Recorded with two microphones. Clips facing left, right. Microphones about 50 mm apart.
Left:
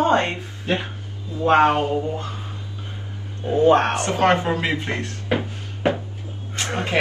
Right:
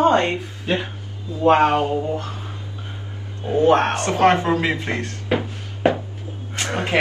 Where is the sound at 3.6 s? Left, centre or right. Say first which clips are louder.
Even; right.